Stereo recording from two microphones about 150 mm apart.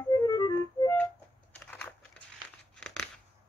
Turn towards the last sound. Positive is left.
turn(degrees=5)  # may be behind; listen again after turning